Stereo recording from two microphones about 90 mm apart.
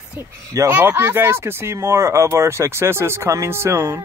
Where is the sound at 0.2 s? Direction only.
30° right (ahead or behind).